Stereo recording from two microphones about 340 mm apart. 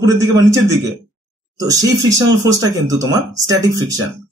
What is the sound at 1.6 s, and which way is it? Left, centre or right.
Speech, centre.